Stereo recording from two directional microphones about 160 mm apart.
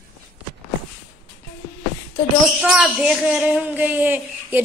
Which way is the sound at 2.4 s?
5° right (ahead or behind).